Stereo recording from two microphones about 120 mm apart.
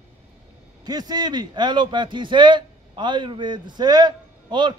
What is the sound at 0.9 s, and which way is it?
Speech, 35° right (ahead or behind).